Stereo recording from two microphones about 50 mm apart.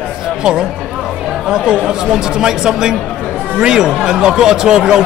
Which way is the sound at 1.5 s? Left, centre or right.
Right.